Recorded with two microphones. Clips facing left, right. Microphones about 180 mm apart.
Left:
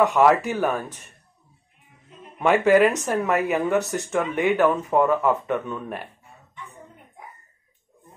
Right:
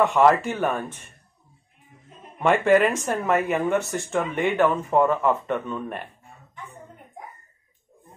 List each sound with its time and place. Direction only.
0.1 s speech: 5° left (ahead or behind)
2.3 s speech: 5° left (ahead or behind)
3.8 s speech: 15° left (ahead or behind)
4.1 s speech: 5° left (ahead or behind)